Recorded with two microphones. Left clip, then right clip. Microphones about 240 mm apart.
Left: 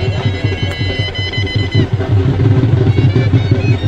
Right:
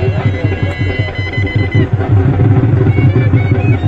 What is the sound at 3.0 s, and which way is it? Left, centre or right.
Music, centre.